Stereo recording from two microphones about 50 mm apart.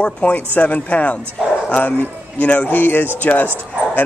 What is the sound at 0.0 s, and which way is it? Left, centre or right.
Speech, left.